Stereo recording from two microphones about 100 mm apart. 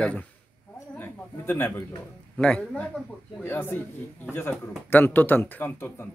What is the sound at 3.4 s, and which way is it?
A man's voice, 25° left (ahead or behind).